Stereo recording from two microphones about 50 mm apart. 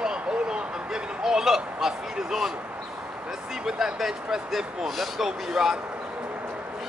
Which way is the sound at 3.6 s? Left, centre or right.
Centre.